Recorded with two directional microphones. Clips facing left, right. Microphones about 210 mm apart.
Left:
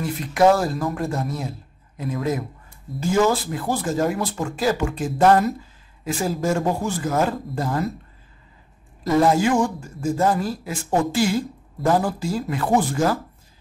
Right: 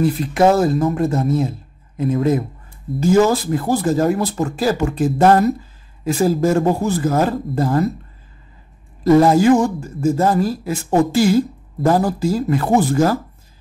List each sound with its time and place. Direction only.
0.0 s speech: 25° right (ahead or behind)
3.0 s speech: 40° right (ahead or behind)
9.2 s speech: 40° right (ahead or behind)